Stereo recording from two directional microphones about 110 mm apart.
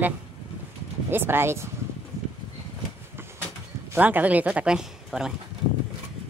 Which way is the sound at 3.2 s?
20° right (ahead or behind).